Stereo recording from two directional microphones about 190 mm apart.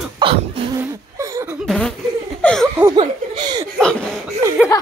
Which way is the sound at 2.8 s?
25° right (ahead or behind).